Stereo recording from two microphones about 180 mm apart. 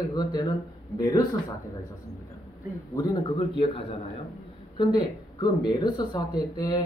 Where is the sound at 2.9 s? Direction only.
25° left (ahead or behind).